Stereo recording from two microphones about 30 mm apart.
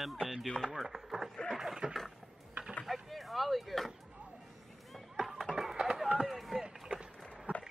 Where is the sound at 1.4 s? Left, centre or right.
Centre.